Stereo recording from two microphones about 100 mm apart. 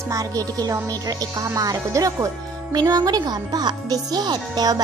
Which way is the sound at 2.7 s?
45° right (ahead or behind).